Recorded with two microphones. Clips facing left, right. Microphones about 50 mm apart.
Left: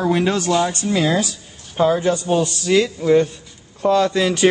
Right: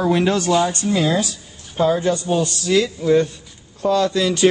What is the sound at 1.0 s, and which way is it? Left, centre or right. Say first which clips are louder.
Speech: left 1 dB; left.